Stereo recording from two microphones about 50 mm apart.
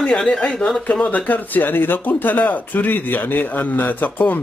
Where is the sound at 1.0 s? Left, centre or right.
Left.